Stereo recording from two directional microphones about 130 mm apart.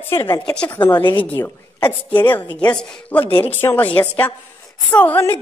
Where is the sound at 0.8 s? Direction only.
35° left (ahead or behind).